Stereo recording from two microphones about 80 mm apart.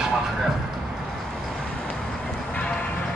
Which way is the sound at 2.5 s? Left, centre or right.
Centre.